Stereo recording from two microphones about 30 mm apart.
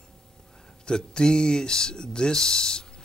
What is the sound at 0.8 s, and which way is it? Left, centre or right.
Speech, left.